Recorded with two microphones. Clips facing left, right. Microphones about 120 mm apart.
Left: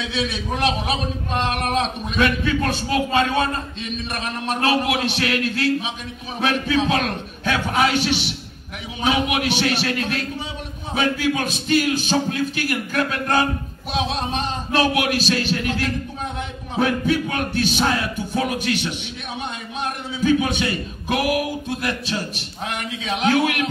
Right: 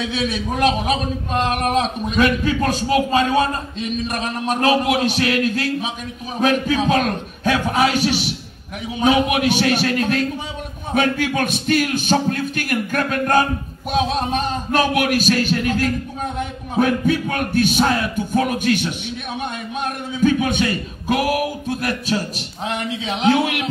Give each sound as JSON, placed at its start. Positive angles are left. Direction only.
{"t": 0.1, "sound": "a man's voice", "side_deg": -45}
{"t": 11.0, "sound": "speech", "side_deg": -55}
{"t": 20.2, "sound": "speech", "side_deg": -50}
{"t": 22.7, "sound": "a man's voice", "side_deg": -30}